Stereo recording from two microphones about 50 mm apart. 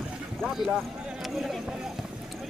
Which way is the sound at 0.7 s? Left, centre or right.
Centre.